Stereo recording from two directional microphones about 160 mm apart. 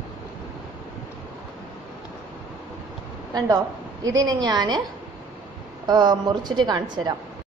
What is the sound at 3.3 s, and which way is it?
A woman's voice, 25° right (ahead or behind).